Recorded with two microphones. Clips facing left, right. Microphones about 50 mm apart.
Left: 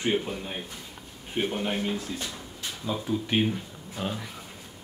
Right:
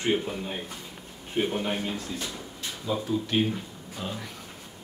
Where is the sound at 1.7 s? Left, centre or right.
Centre.